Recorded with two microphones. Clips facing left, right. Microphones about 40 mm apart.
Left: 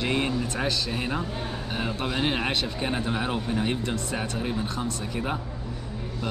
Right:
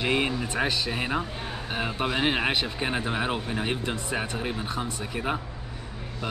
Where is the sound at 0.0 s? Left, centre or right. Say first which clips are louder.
Even; centre.